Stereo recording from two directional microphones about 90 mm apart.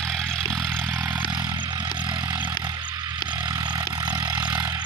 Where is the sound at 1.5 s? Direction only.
60° right (ahead or behind).